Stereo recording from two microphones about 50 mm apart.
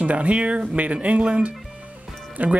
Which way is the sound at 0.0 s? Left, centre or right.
Right.